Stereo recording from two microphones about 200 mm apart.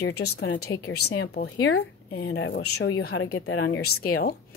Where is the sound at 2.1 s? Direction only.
60° left (ahead or behind); by 3.6 s 75° left (ahead or behind).